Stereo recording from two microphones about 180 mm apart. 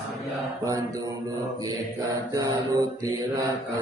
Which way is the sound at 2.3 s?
20° right (ahead or behind).